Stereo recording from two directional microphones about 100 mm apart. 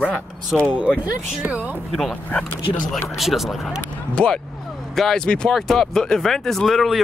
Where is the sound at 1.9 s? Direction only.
5° left (ahead or behind).